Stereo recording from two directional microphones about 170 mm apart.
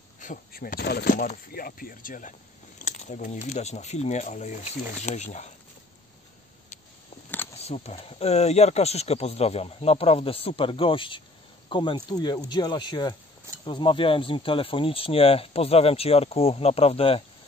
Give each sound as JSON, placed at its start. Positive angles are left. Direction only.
{"t": 0.2, "sound": "speech", "side_deg": 55}
{"t": 7.5, "sound": "speech", "side_deg": 40}